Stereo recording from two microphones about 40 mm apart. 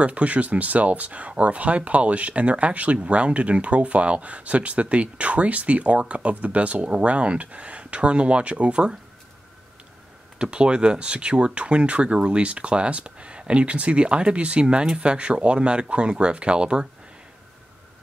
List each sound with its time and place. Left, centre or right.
0.0 s speech: right
10.4 s speech: right